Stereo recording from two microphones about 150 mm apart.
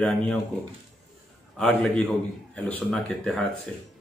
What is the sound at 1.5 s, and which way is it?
Speech, 5° left (ahead or behind).